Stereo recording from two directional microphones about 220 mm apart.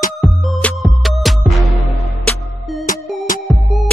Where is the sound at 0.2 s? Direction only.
Centre (ahead or behind).